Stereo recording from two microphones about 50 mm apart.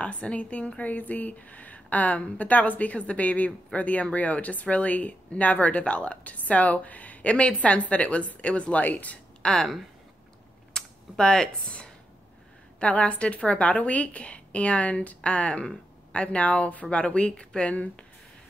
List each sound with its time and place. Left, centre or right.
0.0 s a woman's voice: left
9.4 s speech: centre
10.7 s computer keyboard: centre
12.7 s a woman's voice: left